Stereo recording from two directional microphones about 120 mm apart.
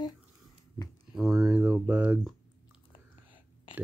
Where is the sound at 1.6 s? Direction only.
10° right (ahead or behind).